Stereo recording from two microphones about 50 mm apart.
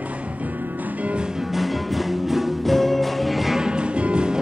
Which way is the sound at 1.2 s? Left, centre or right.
Centre.